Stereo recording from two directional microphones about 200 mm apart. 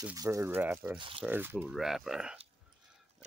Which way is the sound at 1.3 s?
10° right (ahead or behind).